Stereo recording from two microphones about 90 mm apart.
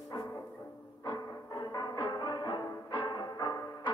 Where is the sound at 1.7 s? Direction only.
50° left (ahead or behind).